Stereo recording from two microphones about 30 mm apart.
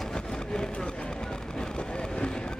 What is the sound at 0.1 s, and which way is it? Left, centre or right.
Vehicle, left.